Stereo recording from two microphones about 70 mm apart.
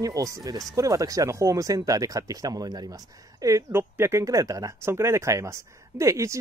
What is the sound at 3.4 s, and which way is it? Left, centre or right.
Speech, right.